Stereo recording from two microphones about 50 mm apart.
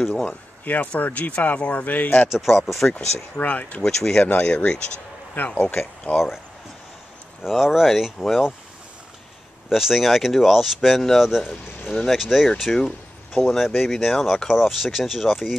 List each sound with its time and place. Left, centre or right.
0.1 s speech: left
0.7 s speech: left
2.2 s speech: centre
2.8 s speech: left
3.8 s speech: centre
4.2 s speech: left
6.1 s speech: centre
7.4 s speech: centre
9.7 s speech: centre
12.7 s speech: centre
14.5 s speech: centre